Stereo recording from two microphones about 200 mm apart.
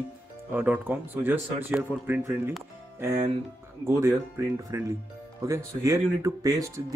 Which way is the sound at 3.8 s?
15° right (ahead or behind).